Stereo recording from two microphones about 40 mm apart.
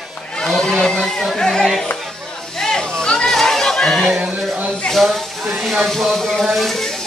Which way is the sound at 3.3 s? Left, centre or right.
Centre.